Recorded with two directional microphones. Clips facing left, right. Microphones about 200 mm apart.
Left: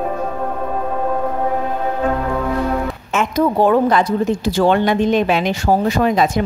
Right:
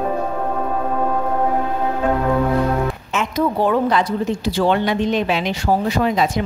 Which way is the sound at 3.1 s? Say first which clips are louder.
Left 5 dB; 50° left (ahead or behind).